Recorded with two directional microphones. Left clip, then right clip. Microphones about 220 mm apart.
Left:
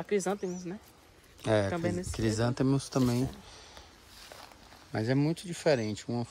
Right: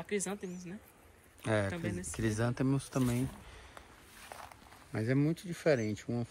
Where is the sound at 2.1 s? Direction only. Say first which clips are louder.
Left 2 dB; 10° left (ahead or behind).